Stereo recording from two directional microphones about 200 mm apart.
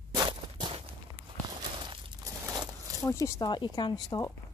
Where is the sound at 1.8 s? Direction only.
20° right (ahead or behind).